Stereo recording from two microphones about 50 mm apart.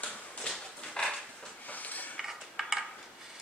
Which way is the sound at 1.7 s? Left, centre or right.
Left.